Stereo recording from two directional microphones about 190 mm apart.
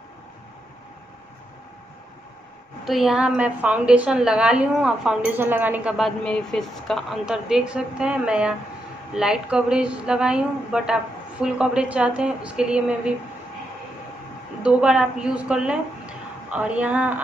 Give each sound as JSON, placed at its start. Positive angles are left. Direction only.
{"t": 2.8, "sound": "a woman's voice", "side_deg": 0}
{"t": 14.6, "sound": "speech", "side_deg": -5}